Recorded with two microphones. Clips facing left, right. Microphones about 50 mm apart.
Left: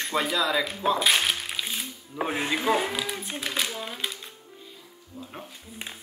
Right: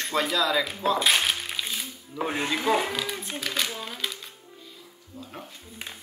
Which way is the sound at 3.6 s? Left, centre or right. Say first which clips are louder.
Even; centre.